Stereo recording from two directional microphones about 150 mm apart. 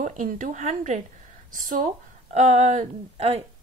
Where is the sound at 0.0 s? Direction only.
60° right (ahead or behind).